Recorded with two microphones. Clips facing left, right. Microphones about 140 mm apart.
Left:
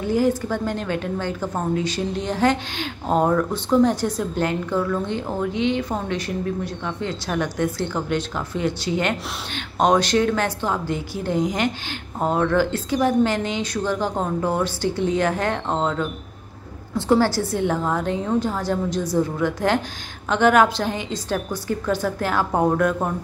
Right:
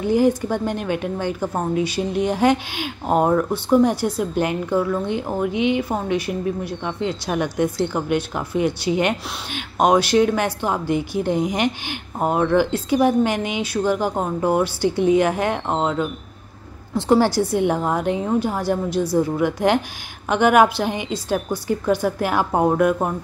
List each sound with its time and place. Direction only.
0.1 s a woman's voice: 15° right (ahead or behind)